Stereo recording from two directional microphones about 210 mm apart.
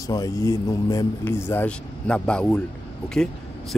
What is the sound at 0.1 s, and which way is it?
A man's voice, 15° left (ahead or behind).